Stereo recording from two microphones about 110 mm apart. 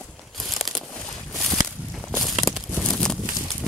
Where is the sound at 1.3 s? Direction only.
Centre (ahead or behind).